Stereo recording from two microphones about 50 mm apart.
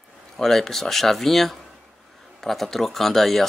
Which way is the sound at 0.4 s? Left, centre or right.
Centre.